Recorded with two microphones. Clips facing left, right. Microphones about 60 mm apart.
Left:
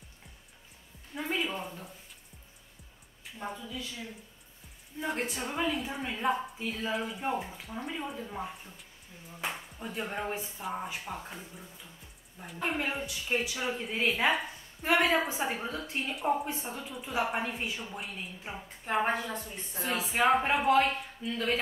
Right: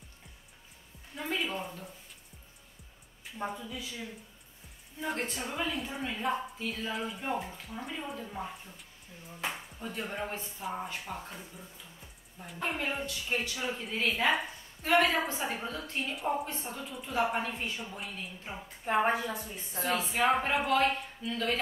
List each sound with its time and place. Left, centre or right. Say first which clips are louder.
1.1 s a sound: left 1 dB; centre
3.5 s a woman's voice: even; centre
5.0 s a woman's voice: left 1 dB; centre
16.8 s a woman's voice: right 2 dB; centre